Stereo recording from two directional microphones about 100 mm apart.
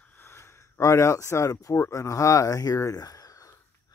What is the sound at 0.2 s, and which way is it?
Speech, 25° left (ahead or behind).